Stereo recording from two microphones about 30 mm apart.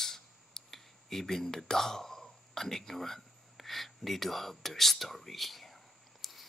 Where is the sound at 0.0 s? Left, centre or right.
Centre.